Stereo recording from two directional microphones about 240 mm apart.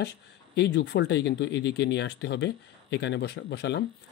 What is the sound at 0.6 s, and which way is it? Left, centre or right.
Speech, left.